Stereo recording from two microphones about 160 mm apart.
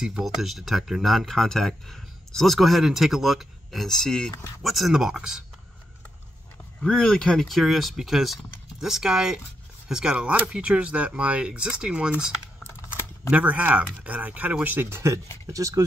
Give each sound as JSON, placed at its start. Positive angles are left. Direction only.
{"t": 0.0, "sound": "speech", "side_deg": -5}
{"t": 6.8, "sound": "speech", "side_deg": 5}
{"t": 13.3, "sound": "speech", "side_deg": -10}